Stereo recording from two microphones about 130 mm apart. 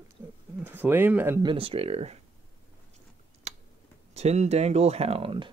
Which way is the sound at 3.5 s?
60° right (ahead or behind).